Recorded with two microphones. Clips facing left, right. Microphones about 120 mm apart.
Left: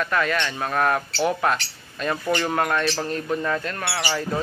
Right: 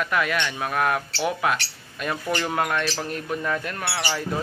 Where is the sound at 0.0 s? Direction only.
10° right (ahead or behind).